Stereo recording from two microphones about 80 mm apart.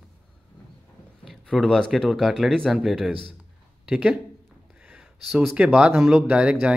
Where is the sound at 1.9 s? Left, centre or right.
Centre.